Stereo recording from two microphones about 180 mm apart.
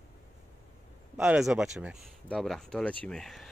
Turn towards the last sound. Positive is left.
turn(degrees=0)  # may be behind; listen again after turning